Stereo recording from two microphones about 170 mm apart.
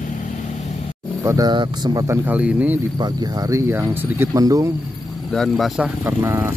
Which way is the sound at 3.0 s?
20° right (ahead or behind).